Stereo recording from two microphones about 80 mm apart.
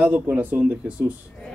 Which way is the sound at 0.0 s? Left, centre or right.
Right.